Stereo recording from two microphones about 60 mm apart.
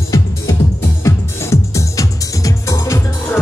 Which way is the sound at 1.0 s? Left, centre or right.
Left.